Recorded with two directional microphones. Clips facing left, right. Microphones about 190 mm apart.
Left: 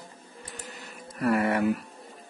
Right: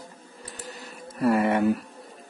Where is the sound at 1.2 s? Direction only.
25° right (ahead or behind).